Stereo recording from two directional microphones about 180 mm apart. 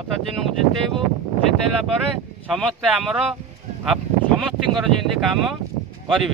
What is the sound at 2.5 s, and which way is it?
Speech, centre (ahead or behind).